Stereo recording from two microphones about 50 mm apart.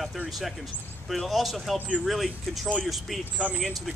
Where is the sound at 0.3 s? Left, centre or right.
Centre.